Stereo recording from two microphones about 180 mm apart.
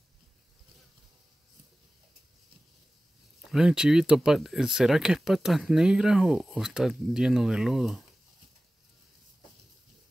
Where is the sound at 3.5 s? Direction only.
5° right (ahead or behind).